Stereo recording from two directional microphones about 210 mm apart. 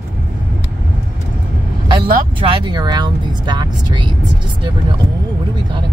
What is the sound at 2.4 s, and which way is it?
Speech, 25° right (ahead or behind).